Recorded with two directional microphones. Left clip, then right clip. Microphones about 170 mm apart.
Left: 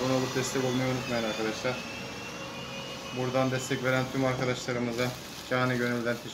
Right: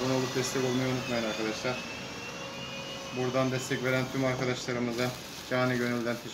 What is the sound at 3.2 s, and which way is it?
Speech, 20° left (ahead or behind).